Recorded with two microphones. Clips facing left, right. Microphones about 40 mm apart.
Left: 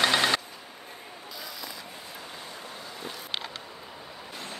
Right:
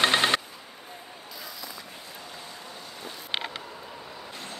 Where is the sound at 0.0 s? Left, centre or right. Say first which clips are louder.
Right 1 dB; right.